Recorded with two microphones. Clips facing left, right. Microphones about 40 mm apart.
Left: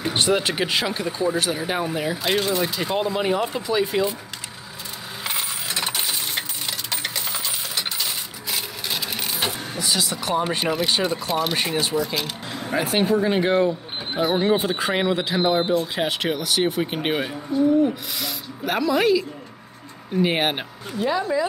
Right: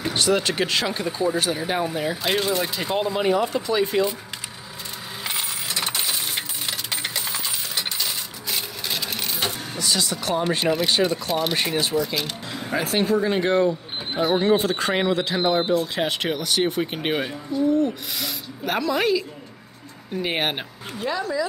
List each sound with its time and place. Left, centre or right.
0.1 s a sound: left
0.4 s speech: centre
5.2 s coin: centre
10.3 s speech: centre
21.2 s speech: left